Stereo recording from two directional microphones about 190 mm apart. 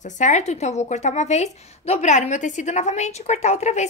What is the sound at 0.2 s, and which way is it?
A woman's voice, 35° left (ahead or behind).